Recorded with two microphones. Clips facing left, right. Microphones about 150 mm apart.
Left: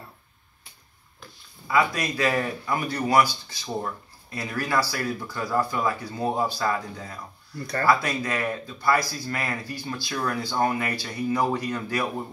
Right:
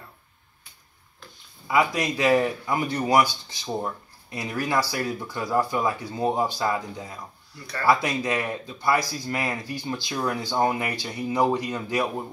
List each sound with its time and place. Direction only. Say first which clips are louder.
1.7 s speech: right 1 dB; 20° right (ahead or behind)
7.5 s speech: left 7 dB; 45° left (ahead or behind)
7.8 s speech: right 1 dB; 15° right (ahead or behind)